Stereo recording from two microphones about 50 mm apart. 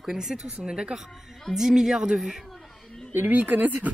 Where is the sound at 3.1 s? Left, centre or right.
Right.